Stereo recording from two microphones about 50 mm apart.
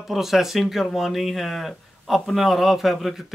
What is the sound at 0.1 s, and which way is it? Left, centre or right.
Speech, centre.